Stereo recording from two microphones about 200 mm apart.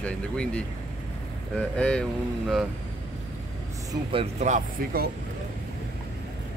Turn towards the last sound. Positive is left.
turn(degrees=-50)  # may be behind; listen again after turning